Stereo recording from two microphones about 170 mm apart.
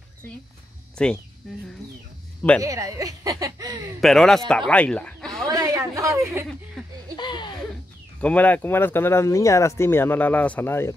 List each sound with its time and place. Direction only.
0.9 s speech: 5° left (ahead or behind)
2.6 s speech: 20° right (ahead or behind)
4.0 s speech: centre (ahead or behind)
5.5 s a sound: 20° right (ahead or behind)
6.8 s laughter: centre (ahead or behind)
7.2 s laughter: 25° left (ahead or behind)
8.2 s speech: 10° left (ahead or behind)